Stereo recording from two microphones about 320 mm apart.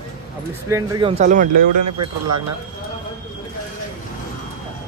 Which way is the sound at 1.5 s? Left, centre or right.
Right.